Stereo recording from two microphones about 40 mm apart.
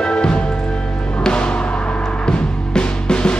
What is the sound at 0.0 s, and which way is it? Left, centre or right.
Music, left.